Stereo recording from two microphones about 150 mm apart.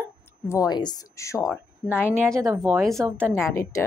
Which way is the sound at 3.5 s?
15° left (ahead or behind).